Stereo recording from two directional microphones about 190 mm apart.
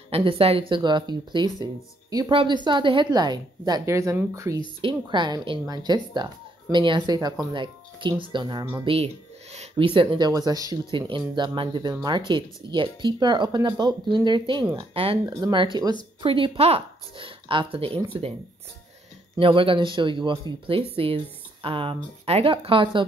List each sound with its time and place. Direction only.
0.1 s speech: 30° right (ahead or behind)
19.3 s speech: 25° right (ahead or behind)